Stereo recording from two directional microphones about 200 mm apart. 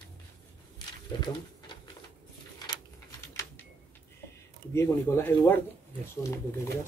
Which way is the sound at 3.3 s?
15° left (ahead or behind).